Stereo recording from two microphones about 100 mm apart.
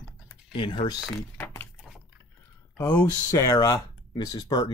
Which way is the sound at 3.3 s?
35° left (ahead or behind).